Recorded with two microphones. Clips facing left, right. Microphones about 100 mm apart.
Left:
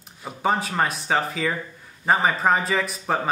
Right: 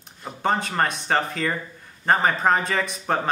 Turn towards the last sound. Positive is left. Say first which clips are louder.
# even
turn(degrees=5)  # may be behind; listen again after turning